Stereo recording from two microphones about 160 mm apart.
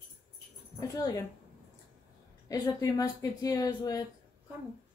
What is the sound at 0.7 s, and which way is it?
Speech, 20° left (ahead or behind).